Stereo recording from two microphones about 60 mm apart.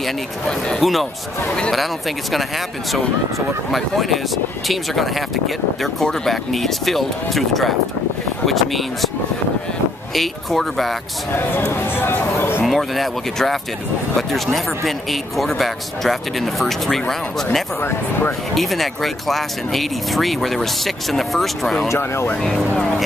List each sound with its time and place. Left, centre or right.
0.5 s speech: centre
3.7 s speech: centre
10.1 s speech: centre
11.7 s speech: left
12.4 s a sound: left
12.6 s speech: centre
18.5 s speech: centre
21.8 s speech: left
22.4 s speech: centre